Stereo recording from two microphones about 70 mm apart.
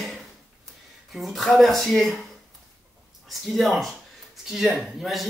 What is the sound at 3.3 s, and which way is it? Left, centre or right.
A man's voice, centre.